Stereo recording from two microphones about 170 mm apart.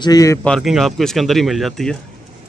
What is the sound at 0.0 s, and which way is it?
Speech, 20° left (ahead or behind).